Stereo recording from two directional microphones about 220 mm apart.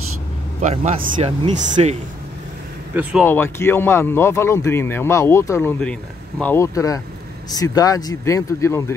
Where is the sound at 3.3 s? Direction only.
10° left (ahead or behind).